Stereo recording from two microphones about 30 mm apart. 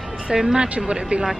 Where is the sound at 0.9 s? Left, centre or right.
Right.